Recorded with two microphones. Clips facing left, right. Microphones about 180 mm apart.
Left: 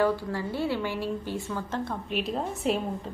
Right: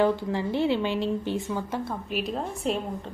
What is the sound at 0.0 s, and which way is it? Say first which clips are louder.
A woman's voice: right 2 dB; 20° right (ahead or behind).